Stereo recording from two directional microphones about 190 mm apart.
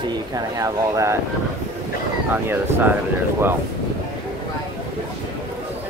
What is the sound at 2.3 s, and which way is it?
Speech, 10° right (ahead or behind).